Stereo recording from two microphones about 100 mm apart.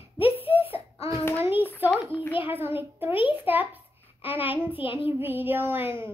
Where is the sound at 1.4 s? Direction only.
20° right (ahead or behind).